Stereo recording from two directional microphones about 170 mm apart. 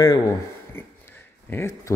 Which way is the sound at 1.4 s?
15° left (ahead or behind).